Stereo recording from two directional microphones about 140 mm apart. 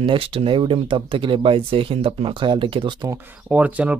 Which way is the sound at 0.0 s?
40° right (ahead or behind).